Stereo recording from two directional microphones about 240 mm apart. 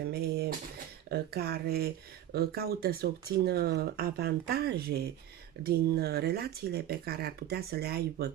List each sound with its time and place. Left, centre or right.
0.0 s dishes: right
1.0 s speech: right